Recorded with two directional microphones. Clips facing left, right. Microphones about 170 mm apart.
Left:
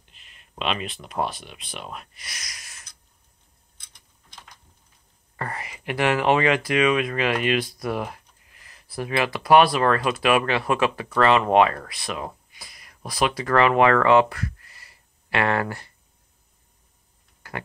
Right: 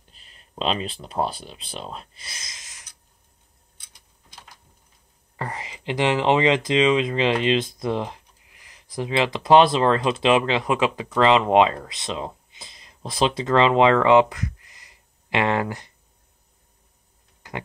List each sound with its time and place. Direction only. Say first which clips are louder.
0.1 s speech: right 3 dB; 35° right (ahead or behind)
5.3 s speech: right 1 dB; 15° right (ahead or behind)
17.4 s a sound: right 1 dB; 20° right (ahead or behind)